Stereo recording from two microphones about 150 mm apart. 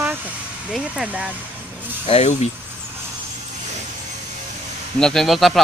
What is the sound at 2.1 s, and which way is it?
Speech, 45° left (ahead or behind).